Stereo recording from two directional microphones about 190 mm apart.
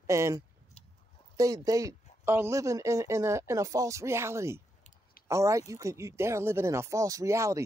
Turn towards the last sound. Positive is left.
turn(degrees=-15)  # may be behind; listen again after turning